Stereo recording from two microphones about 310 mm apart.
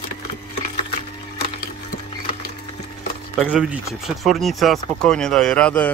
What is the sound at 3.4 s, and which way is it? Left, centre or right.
Speech, centre.